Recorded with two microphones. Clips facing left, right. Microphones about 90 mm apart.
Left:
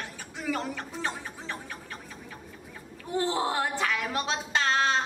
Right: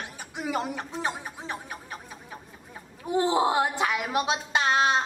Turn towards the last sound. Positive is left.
turn(degrees=-15)  # may be behind; listen again after turning